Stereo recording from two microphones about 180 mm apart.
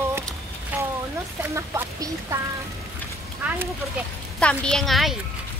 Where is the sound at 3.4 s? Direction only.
10° right (ahead or behind).